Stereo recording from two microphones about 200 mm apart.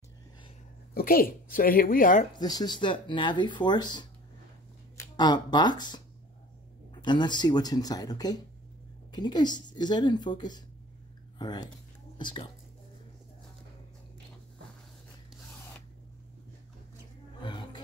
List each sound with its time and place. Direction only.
0.9 s a woman's voice: 45° left (ahead or behind)
2.3 s speech: 20° left (ahead or behind)
5.1 s speech: 20° left (ahead or behind)
17.4 s roaring cats: 20° left (ahead or behind)